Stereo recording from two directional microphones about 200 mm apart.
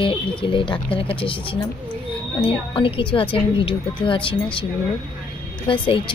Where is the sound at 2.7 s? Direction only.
25° left (ahead or behind).